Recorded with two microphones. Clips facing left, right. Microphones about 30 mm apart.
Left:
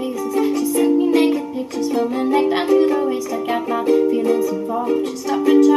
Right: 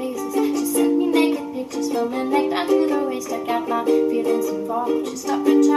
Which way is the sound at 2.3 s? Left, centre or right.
Centre.